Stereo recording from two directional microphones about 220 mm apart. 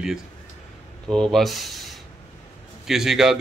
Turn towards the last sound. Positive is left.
turn(degrees=0)  # may be behind; listen again after turning